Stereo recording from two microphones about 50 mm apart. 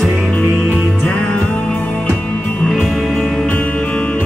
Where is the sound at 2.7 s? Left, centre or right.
Centre.